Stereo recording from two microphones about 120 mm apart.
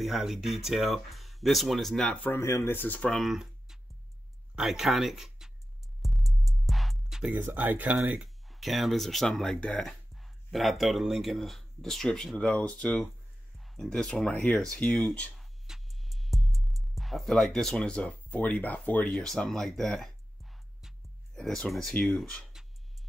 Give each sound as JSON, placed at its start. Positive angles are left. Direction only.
{"t": 0.0, "sound": "speech", "side_deg": 0}
{"t": 2.2, "sound": "speech", "side_deg": 20}
{"t": 3.3, "sound": "a sound", "side_deg": -5}
{"t": 4.6, "sound": "speech", "side_deg": -5}
{"t": 6.0, "sound": "music", "side_deg": 0}
{"t": 8.2, "sound": "speech", "side_deg": 0}
{"t": 15.3, "sound": "music", "side_deg": 0}
{"t": 21.4, "sound": "speech", "side_deg": 5}